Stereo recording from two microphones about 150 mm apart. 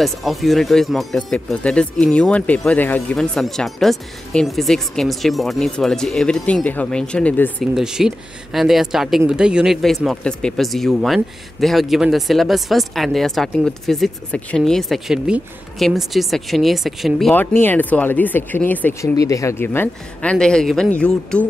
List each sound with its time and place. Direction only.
0.0 s speech: centre (ahead or behind)
7.7 s speech: 5° right (ahead or behind)
17.3 s speech: 15° left (ahead or behind)
19.1 s speech: 20° left (ahead or behind)